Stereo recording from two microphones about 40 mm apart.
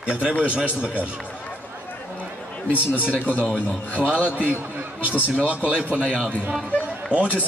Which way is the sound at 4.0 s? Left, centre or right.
Left.